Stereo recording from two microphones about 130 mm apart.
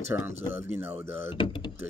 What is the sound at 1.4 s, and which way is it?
Speech, 40° left (ahead or behind).